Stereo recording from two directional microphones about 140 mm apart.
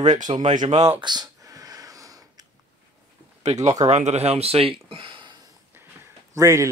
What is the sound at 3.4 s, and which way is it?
Speech, 55° right (ahead or behind).